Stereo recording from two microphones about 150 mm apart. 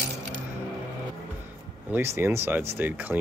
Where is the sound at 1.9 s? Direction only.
15° right (ahead or behind).